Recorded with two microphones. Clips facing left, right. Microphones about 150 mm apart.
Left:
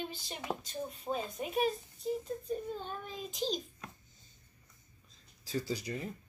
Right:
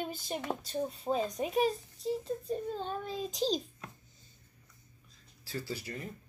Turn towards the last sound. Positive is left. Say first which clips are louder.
# left 3 dB
turn(degrees=15)  # may be behind; listen again after turning